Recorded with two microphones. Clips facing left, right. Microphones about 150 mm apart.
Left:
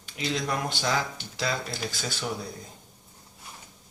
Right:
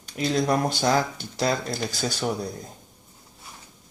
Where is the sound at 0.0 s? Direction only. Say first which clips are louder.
Right 6 dB; 40° right (ahead or behind).